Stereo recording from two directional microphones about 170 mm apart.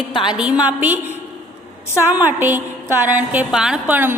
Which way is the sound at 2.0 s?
10° right (ahead or behind).